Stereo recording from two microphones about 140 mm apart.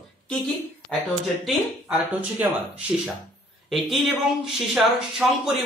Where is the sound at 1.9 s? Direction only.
10° right (ahead or behind).